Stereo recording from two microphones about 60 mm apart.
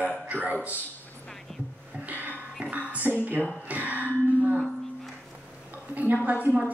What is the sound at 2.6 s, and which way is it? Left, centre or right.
Music, right.